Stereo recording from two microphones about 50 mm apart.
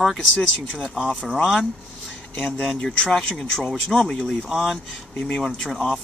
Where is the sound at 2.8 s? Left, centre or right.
Centre.